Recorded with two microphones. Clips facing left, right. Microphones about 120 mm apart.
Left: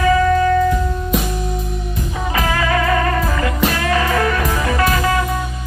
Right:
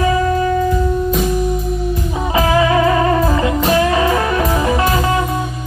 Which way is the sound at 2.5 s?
20° right (ahead or behind).